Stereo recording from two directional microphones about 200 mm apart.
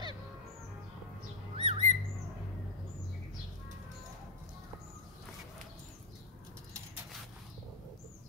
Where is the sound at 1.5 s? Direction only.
30° right (ahead or behind).